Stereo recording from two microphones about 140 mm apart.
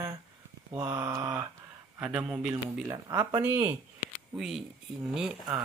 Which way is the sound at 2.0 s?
5° right (ahead or behind).